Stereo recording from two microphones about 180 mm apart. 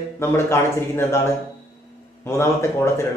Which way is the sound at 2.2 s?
15° left (ahead or behind).